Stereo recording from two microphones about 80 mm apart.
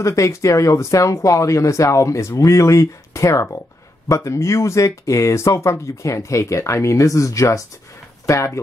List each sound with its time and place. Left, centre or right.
0.0 s speech: left